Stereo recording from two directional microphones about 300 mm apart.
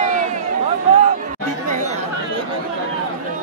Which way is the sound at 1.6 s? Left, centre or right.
Right.